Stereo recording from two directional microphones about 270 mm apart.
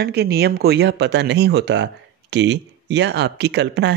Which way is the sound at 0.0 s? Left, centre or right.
Right.